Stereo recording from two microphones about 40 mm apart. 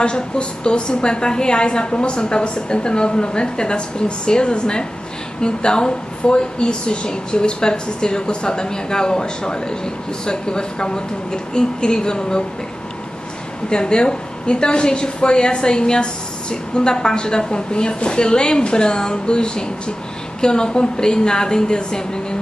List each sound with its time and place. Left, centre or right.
0.0 s a woman's voice: left
13.7 s a woman's voice: left